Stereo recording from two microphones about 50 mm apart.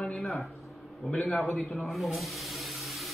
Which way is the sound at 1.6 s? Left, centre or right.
Centre.